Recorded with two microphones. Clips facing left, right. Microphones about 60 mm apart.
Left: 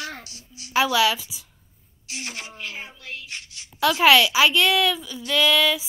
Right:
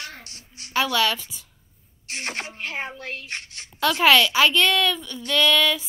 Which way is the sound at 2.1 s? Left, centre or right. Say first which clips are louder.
Right 4 dB; right.